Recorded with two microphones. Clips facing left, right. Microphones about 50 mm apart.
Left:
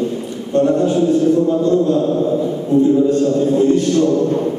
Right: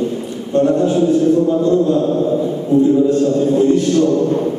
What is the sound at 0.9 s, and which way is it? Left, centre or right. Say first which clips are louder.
A man's voice: right 1 dB; centre.